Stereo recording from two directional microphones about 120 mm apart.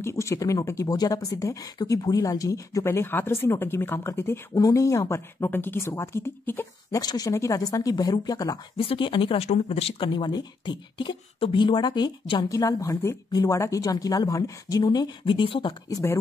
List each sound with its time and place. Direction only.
0.0 s speech: 25° left (ahead or behind)
7.0 s speech: 30° left (ahead or behind)
8.7 s speech: 50° left (ahead or behind)
15.2 s speech: 45° left (ahead or behind)
15.9 s speech: 25° left (ahead or behind)